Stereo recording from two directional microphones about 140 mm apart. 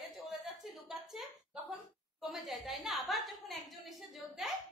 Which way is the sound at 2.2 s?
Centre (ahead or behind).